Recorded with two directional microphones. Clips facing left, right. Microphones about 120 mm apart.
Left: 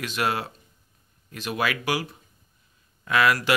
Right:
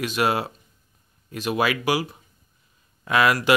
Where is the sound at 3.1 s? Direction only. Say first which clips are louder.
Right 2 dB; 20° right (ahead or behind).